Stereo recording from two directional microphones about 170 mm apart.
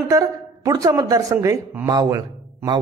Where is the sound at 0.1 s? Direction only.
20° right (ahead or behind).